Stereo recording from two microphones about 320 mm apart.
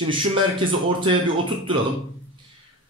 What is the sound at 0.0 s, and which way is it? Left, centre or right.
A man's voice, centre.